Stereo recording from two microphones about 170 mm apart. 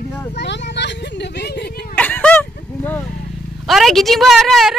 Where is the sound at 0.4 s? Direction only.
90° left; by 2.0 s 70° left (ahead or behind).